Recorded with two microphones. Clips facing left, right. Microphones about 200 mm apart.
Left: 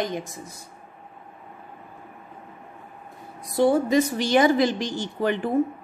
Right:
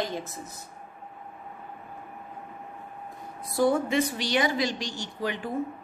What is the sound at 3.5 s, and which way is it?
Speech, 30° left (ahead or behind).